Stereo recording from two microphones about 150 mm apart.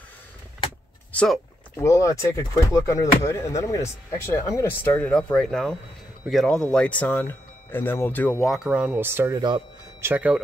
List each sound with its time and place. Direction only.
1.1 s speech: 5° left (ahead or behind)
1.8 s speech: 20° left (ahead or behind)
8.5 s speech: 5° right (ahead or behind)